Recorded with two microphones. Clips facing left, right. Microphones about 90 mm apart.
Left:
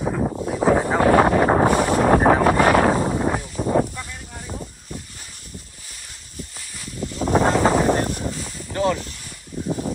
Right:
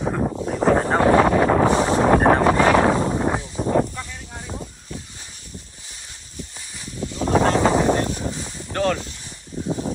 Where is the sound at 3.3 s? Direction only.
25° right (ahead or behind).